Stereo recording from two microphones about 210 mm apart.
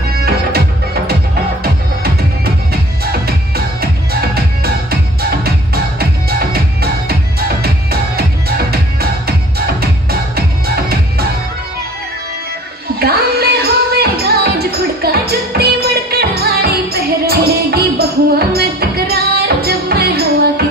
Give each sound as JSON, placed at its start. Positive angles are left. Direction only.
{"t": 0.1, "sound": "music", "side_deg": -50}
{"t": 3.3, "sound": "music", "side_deg": -50}
{"t": 5.9, "sound": "music", "side_deg": -50}
{"t": 13.0, "sound": "music", "side_deg": -50}